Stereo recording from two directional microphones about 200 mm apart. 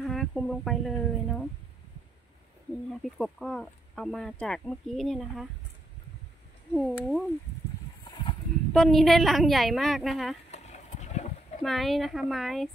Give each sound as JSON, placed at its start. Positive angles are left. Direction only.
{"t": 0.0, "sound": "speech", "side_deg": 0}
{"t": 2.9, "sound": "speech", "side_deg": 0}
{"t": 6.7, "sound": "speech", "side_deg": 0}
{"t": 8.7, "sound": "speech", "side_deg": 0}
{"t": 10.5, "sound": "a sound", "side_deg": 35}
{"t": 11.6, "sound": "speech", "side_deg": 0}